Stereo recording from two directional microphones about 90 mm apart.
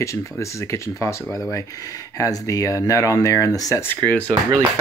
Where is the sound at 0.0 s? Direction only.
35° left (ahead or behind).